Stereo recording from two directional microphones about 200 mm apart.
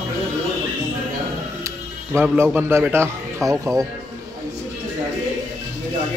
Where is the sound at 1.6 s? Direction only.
15° right (ahead or behind).